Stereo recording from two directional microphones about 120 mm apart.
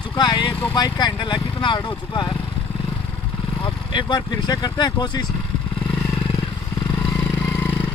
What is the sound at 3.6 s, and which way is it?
Speech, 40° left (ahead or behind).